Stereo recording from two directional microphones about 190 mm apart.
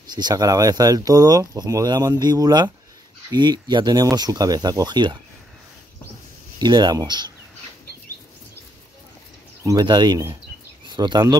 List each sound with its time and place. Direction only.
0.1 s speech: 20° right (ahead or behind)
6.6 s speech: 20° right (ahead or behind)
9.6 s speech: 20° right (ahead or behind)